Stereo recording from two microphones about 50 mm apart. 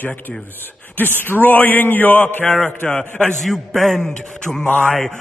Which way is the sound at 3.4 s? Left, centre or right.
Centre.